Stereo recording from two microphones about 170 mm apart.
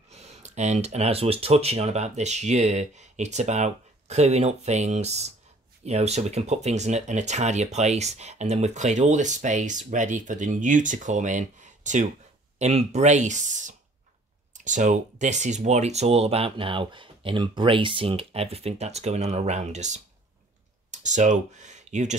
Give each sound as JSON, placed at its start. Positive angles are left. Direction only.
{"t": 0.1, "sound": "speech", "side_deg": -40}